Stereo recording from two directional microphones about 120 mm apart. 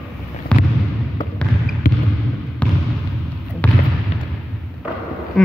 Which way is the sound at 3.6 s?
15° left (ahead or behind).